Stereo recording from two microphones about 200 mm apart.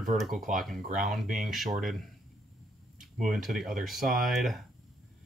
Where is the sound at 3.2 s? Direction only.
Centre (ahead or behind).